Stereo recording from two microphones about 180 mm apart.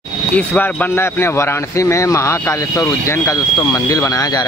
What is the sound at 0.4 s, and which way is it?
A man's voice, 10° left (ahead or behind).